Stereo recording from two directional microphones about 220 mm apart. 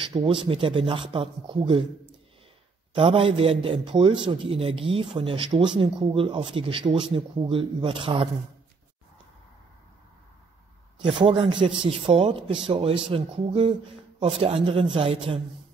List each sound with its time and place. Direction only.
0.0 s a man's voice: 20° right (ahead or behind)
3.0 s a man's voice: 25° right (ahead or behind)
11.2 s a man's voice: 20° right (ahead or behind)